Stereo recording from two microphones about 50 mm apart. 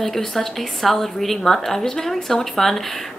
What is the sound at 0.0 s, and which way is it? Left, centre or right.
A woman's voice, centre.